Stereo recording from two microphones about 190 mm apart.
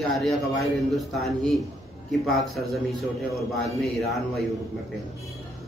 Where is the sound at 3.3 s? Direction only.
Centre (ahead or behind).